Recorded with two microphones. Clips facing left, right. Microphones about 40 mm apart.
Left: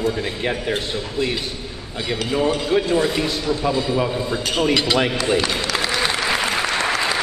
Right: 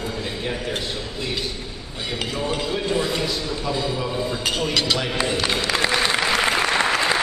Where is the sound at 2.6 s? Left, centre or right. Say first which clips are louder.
Left 5 dB; centre.